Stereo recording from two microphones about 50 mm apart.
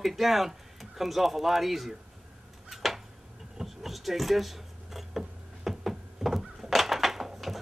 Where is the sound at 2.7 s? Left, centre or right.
Centre.